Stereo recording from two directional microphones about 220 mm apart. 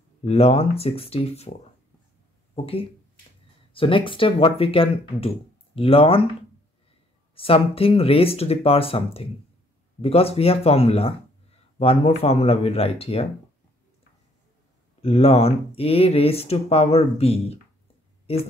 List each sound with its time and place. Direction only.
0.2 s speech: 30° left (ahead or behind)
2.5 s speech: 25° left (ahead or behind)
7.3 s speech: 25° left (ahead or behind)
15.0 s speech: 25° left (ahead or behind)
18.2 s a sound: 25° left (ahead or behind)